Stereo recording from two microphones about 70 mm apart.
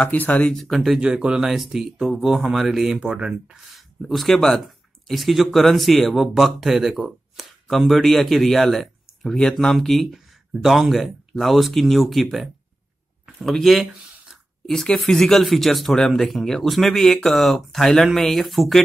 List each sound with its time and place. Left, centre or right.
0.1 s speech: left
0.5 s speech: centre
1.0 s speech: centre